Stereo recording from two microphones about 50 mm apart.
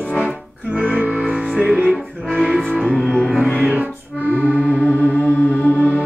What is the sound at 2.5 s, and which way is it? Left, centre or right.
Music, centre.